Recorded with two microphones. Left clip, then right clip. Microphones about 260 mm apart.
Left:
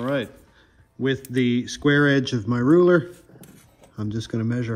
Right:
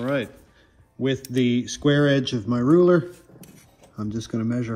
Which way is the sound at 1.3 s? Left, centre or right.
Centre.